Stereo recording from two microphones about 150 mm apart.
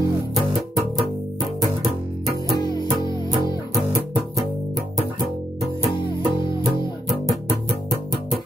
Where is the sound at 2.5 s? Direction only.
30° left (ahead or behind).